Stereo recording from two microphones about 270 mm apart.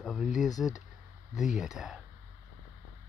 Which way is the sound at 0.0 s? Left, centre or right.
Centre.